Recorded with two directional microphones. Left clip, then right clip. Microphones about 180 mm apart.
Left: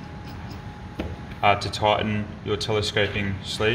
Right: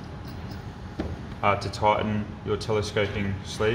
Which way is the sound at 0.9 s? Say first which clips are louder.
Even; 50° left (ahead or behind).